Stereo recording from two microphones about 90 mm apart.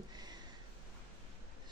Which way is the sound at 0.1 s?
50° right (ahead or behind).